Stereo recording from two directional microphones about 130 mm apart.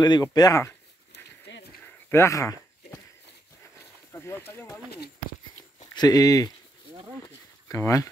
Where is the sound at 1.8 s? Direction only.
20° left (ahead or behind).